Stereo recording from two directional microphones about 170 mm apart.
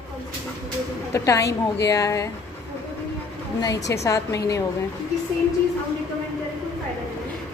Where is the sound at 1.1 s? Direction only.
20° left (ahead or behind).